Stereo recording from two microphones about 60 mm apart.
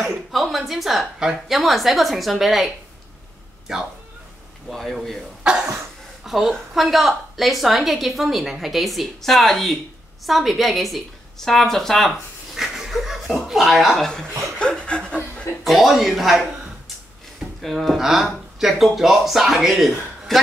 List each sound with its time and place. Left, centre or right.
0.3 s a woman's voice: centre
5.4 s speech: centre
6.2 s a woman's voice: centre
12.5 s chuckle: centre
14.6 s chuckle: centre
15.6 s a woman's voice: centre
17.6 s a woman's voice: centre